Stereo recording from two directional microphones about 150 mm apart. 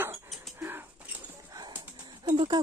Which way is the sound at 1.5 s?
30° right (ahead or behind).